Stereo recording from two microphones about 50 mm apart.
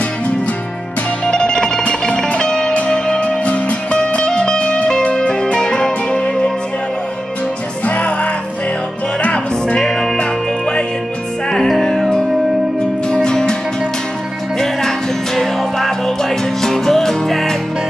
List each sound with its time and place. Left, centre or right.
1.2 s music: centre
7.8 s music: left
9.8 s music: centre
11.5 s music: centre
14.6 s music: centre